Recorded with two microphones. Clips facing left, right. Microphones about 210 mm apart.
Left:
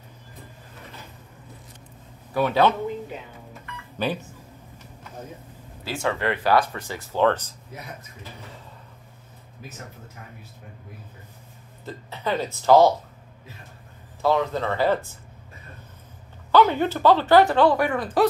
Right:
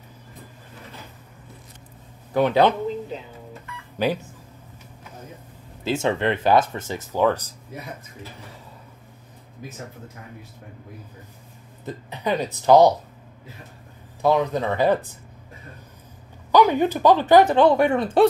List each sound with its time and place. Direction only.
2.3 s speech: 15° right (ahead or behind)
5.9 s speech: 20° right (ahead or behind)
11.8 s speech: 15° right (ahead or behind)
14.2 s speech: 15° right (ahead or behind)
16.5 s speech: 15° right (ahead or behind)